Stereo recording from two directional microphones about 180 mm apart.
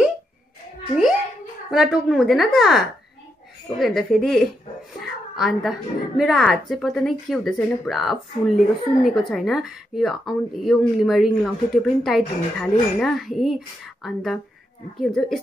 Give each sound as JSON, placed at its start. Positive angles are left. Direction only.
{"t": 1.7, "sound": "speech", "side_deg": -5}
{"t": 3.8, "sound": "speech", "side_deg": 0}